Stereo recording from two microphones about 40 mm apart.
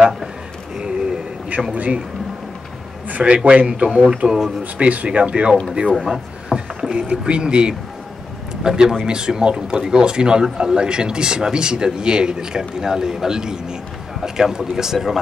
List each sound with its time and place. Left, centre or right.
0.7 s a sound: centre
1.7 s speech: right
3.1 s a sound: right
3.4 s speech: right
4.1 s speech: centre
4.7 s speech: right
6.5 s speech: right